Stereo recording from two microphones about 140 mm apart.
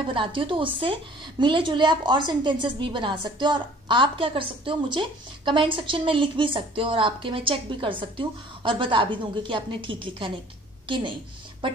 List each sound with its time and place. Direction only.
0.1 s a woman's voice: 40° right (ahead or behind)